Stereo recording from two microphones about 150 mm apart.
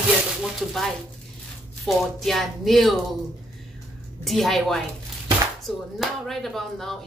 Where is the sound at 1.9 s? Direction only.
Centre (ahead or behind).